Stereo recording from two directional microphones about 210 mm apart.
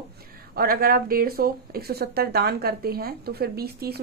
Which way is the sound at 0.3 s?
45° right (ahead or behind).